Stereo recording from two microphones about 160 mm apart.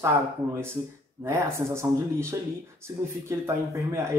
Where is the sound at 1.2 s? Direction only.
15° right (ahead or behind).